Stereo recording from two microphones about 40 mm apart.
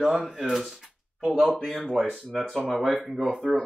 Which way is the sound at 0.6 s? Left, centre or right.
Centre.